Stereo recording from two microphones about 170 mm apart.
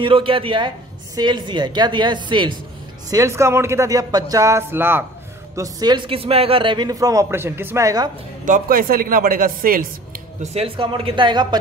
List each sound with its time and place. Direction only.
0.0 s a man's voice: 30° right (ahead or behind); by 5.0 s 10° right (ahead or behind)
5.6 s a man's voice: 25° right (ahead or behind)
8.5 s speech: 55° right (ahead or behind)
10.4 s a man's voice: 35° right (ahead or behind)